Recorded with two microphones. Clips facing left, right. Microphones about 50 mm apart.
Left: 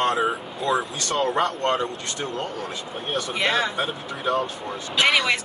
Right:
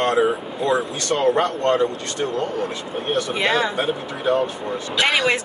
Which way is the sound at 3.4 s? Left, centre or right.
Right.